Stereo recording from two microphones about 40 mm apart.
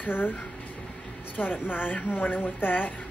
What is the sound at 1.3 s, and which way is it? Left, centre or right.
Speech, left.